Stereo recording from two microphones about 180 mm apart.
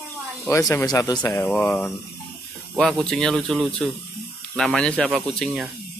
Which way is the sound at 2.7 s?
Centre (ahead or behind).